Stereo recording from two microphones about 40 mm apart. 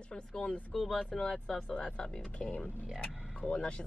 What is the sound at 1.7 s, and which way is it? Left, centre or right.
Speech, left.